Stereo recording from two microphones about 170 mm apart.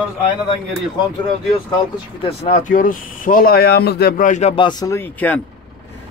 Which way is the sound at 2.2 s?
40° left (ahead or behind).